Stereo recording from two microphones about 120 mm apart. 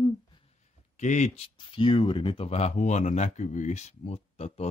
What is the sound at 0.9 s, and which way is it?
Speech, 80° left.